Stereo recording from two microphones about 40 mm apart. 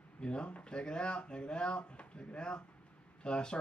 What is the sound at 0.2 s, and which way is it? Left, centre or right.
Speech, left.